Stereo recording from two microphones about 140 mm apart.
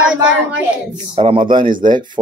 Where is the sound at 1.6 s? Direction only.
70° right (ahead or behind).